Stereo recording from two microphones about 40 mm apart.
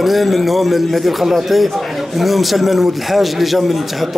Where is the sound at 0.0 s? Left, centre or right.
Centre.